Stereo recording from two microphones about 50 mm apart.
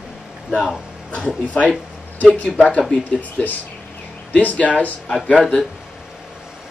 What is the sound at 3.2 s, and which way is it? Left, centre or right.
Speech, left.